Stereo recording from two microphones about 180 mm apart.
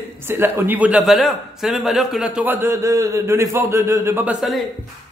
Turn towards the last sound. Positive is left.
turn(degrees=0)  # may be behind; listen again after turning